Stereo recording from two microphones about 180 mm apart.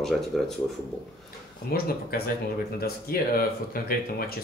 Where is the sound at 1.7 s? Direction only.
60° left (ahead or behind).